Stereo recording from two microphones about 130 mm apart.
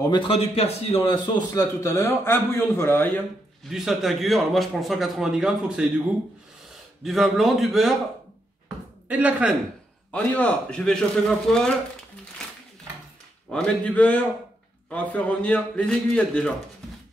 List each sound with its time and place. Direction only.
0.1 s a man's voice: 50° left (ahead or behind)
1.5 s speech: 25° left (ahead or behind)
3.6 s a man's voice: 5° right (ahead or behind)
7.0 s a man's voice: centre (ahead or behind)
9.1 s speech: 10° right (ahead or behind)
10.1 s a man's voice: 10° left (ahead or behind)
12.4 s a sound: 5° left (ahead or behind)
13.5 s a man's voice: 10° left (ahead or behind)